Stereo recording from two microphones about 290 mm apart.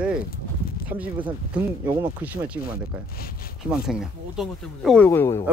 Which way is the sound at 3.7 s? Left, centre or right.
Centre.